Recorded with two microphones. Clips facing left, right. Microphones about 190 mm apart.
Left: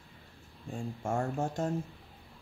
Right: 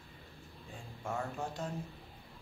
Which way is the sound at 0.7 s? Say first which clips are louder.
Left 7 dB; 45° left (ahead or behind).